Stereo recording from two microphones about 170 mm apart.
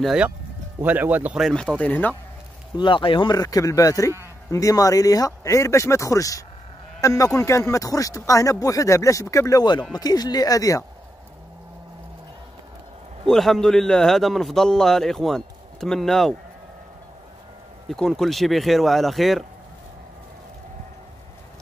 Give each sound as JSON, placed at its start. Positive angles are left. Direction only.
{"t": 0.0, "sound": "a man's voice", "side_deg": -5}
{"t": 2.8, "sound": "speech", "side_deg": 30}
{"t": 13.3, "sound": "a man's voice", "side_deg": 0}
{"t": 17.8, "sound": "a man's voice", "side_deg": 0}